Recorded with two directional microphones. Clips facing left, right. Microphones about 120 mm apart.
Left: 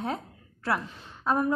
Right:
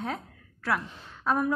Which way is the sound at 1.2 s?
Centre (ahead or behind).